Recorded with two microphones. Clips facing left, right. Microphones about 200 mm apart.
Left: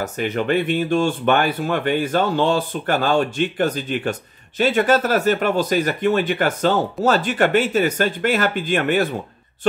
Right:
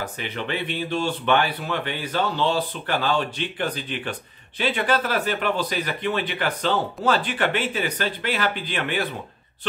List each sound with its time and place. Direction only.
0.0 s speech: 45° left (ahead or behind)